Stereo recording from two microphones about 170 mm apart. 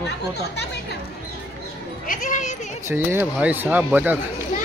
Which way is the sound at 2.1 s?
50° left (ahead or behind).